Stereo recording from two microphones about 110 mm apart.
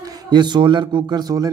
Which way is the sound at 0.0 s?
35° right (ahead or behind).